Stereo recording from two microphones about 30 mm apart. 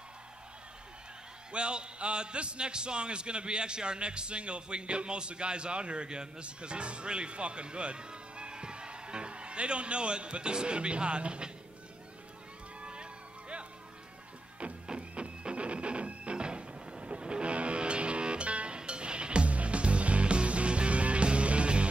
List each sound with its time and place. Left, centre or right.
1.5 s a man's voice: right
12.8 s music: right